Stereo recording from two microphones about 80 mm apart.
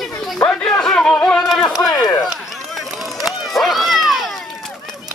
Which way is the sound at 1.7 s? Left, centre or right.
Left.